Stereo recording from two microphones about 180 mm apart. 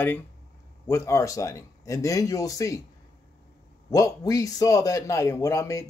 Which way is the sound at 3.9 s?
20° left (ahead or behind).